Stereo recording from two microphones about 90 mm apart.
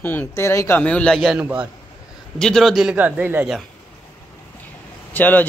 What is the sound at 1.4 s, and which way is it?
Speech, 15° right (ahead or behind).